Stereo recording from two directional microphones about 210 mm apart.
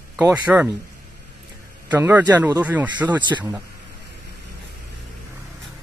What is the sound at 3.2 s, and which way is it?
Speech, 20° right (ahead or behind).